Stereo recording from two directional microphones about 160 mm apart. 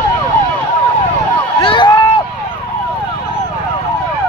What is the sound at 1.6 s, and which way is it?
Run, 30° left (ahead or behind).